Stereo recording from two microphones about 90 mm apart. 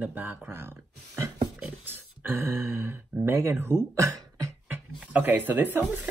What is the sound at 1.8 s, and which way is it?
Speech, 25° right (ahead or behind).